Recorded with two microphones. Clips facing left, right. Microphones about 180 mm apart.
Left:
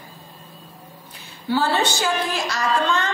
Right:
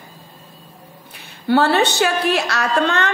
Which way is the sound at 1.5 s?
65° right (ahead or behind).